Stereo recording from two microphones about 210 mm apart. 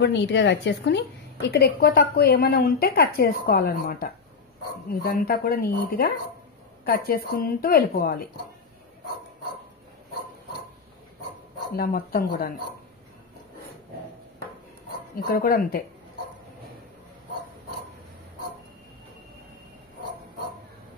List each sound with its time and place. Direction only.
0.0 s a woman's voice: 55° left (ahead or behind)
11.7 s a woman's voice: 45° left (ahead or behind)
15.1 s a woman's voice: 45° left (ahead or behind)